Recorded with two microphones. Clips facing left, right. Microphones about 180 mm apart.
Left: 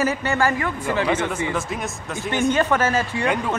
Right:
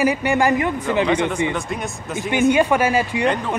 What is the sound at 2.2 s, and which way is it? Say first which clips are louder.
A man's voice: right 4 dB; 15° right (ahead or behind).